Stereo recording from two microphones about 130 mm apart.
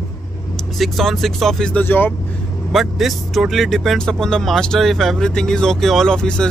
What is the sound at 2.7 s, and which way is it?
Speech, centre (ahead or behind).